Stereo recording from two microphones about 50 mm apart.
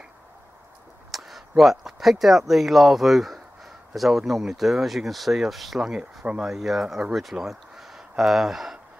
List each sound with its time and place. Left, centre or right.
1.1 s a sound: centre
1.6 s speech: centre
5.8 s speech: centre
6.3 s speech: centre